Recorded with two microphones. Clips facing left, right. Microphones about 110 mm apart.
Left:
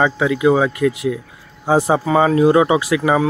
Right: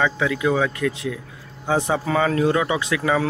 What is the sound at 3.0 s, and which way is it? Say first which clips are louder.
Speech: left 5 dB; 10° left (ahead or behind).